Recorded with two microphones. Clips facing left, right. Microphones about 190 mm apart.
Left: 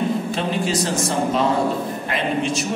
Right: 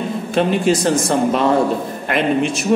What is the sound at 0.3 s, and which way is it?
Speech, 60° right (ahead or behind).